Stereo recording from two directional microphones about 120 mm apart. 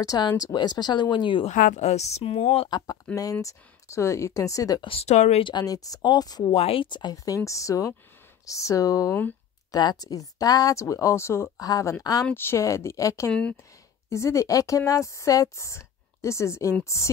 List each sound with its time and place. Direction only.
0.0 s speech: 35° left (ahead or behind)
1.4 s speech: 90° left; by 2.7 s 60° left (ahead or behind)
3.2 s a woman's voice: 30° left (ahead or behind)
4.8 s speech: 60° left (ahead or behind)
5.4 s speech: 35° left (ahead or behind)
6.5 s a woman's voice: 50° left (ahead or behind); by 12.3 s 30° left (ahead or behind)
12.3 s a woman's voice: 20° left (ahead or behind)
13.3 s speech: 10° left (ahead or behind)
14.0 s a woman's voice: 25° left (ahead or behind)